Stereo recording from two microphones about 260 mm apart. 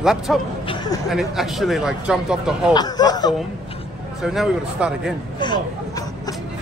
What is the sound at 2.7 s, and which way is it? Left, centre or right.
Speech, centre.